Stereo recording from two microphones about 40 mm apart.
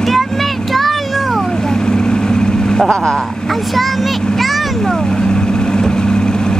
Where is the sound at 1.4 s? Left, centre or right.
Centre.